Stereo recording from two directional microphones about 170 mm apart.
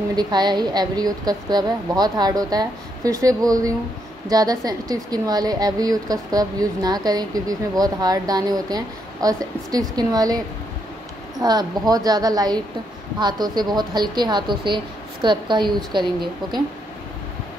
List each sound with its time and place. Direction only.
0.1 s speech: 25° right (ahead or behind)
11.4 s speech: 25° right (ahead or behind)